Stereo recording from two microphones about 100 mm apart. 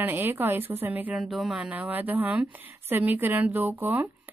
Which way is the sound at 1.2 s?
Centre (ahead or behind).